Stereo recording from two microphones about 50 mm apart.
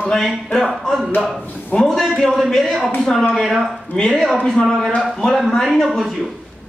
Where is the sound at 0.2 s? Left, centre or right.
Centre.